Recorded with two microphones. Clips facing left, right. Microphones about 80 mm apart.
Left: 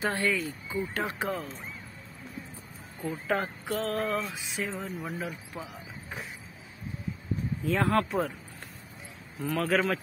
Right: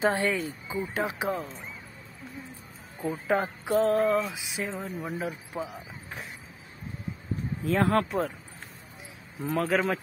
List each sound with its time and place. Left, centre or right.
0.0 s speech: right
1.0 s speech: centre
3.0 s speech: centre
3.6 s mantra: right
3.9 s speech: centre
7.6 s speech: centre
9.4 s speech: centre
9.7 s speech: centre